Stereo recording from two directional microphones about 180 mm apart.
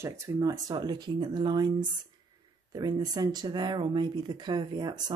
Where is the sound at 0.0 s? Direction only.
15° right (ahead or behind).